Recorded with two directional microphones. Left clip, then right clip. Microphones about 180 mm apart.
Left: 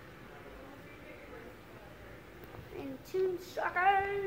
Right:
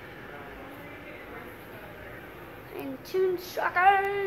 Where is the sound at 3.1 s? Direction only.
10° right (ahead or behind).